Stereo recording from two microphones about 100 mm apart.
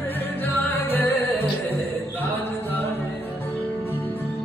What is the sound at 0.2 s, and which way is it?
Music, 20° left (ahead or behind).